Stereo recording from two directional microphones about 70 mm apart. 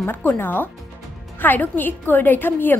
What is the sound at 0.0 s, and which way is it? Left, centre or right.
A woman's voice, left.